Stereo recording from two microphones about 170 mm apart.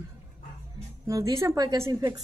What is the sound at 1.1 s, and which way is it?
Speech, 20° right (ahead or behind).